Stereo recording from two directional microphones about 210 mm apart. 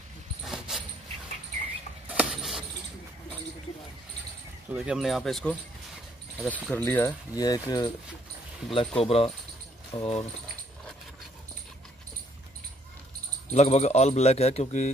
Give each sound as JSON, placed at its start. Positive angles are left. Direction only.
{"t": 0.5, "sound": "dog", "side_deg": 0}
{"t": 2.0, "sound": "a sound", "side_deg": -5}
{"t": 4.7, "sound": "speech", "side_deg": 0}
{"t": 13.5, "sound": "speech", "side_deg": 30}